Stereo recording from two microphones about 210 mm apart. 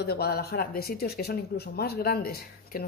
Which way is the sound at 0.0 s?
50° left (ahead or behind).